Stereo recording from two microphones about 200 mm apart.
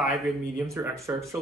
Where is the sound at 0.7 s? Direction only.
15° right (ahead or behind).